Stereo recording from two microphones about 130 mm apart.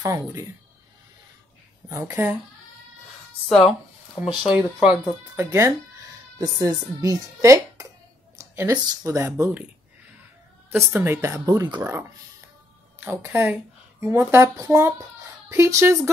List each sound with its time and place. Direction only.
0.0 s speech: 25° right (ahead or behind)
1.9 s speech: 25° right (ahead or behind)
3.4 s a sound: 5° left (ahead or behind)
4.4 s speech: 5° right (ahead or behind); by 7.8 s 25° right (ahead or behind)
8.4 s a sound: 25° right (ahead or behind)
8.7 s speech: 25° right (ahead or behind)
10.7 s speech: 15° right (ahead or behind); by 11.8 s 35° right (ahead or behind)
11.8 s speech: 20° right (ahead or behind)